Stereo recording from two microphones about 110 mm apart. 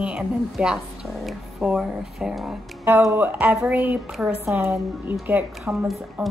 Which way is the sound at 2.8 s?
25° right (ahead or behind).